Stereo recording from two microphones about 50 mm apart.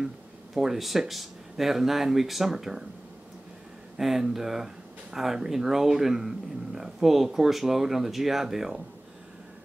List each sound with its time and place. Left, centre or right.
0.6 s speech: centre
4.0 s speech: centre